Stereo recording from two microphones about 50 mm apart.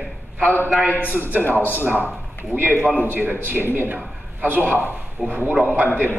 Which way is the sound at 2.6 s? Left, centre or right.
Right.